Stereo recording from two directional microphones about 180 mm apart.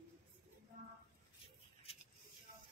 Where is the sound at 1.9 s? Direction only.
30° left (ahead or behind).